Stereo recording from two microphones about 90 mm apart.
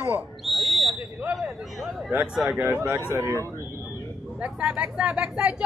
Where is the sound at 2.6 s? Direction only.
30° right (ahead or behind).